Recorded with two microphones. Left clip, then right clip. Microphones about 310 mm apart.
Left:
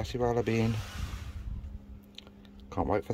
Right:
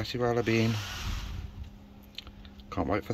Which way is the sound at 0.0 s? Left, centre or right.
Centre.